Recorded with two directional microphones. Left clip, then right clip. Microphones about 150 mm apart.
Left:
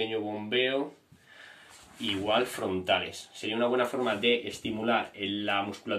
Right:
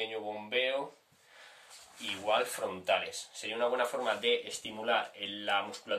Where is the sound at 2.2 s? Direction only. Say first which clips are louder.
Left 2 dB; 30° right (ahead or behind).